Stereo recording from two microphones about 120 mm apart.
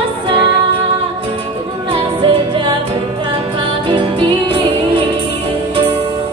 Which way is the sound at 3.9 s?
45° right (ahead or behind).